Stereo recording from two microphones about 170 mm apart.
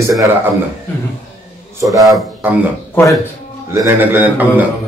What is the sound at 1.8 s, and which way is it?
Speech, 20° right (ahead or behind).